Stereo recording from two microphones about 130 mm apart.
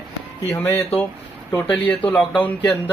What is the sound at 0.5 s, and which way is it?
Speech, 15° left (ahead or behind).